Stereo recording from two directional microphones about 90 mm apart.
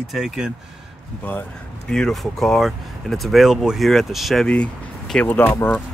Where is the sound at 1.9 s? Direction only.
5° left (ahead or behind).